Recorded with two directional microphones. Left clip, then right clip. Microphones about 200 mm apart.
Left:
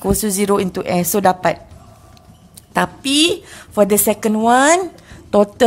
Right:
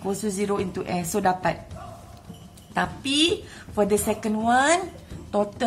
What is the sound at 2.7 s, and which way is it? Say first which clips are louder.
Speech: left 8 dB; 50° left (ahead or behind).